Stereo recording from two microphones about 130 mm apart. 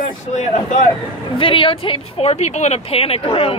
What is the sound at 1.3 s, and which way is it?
Speech, 40° left (ahead or behind).